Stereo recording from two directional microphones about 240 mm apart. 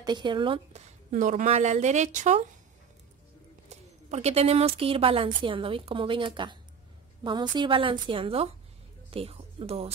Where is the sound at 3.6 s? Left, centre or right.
Right.